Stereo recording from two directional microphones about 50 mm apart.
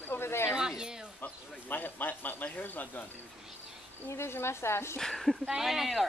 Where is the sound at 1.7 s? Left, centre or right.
Left.